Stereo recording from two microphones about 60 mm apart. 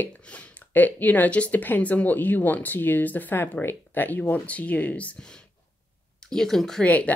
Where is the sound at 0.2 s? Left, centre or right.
Left.